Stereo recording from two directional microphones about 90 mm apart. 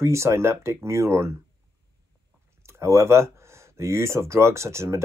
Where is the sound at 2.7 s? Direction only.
30° right (ahead or behind).